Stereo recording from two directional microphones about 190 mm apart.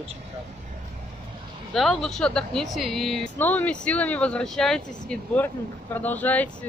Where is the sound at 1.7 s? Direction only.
Centre (ahead or behind).